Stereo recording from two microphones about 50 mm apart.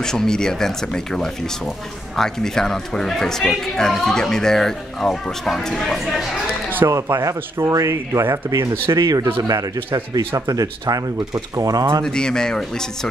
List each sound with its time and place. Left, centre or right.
0.0 s speech: centre
6.9 s speech: right
8.9 s speech: right
11.5 s speech: right
12.0 s speech: centre